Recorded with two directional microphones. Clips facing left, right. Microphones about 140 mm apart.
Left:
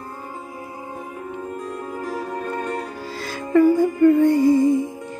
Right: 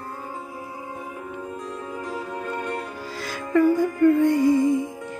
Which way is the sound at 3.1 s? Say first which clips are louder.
Left 4 dB; 30° left (ahead or behind).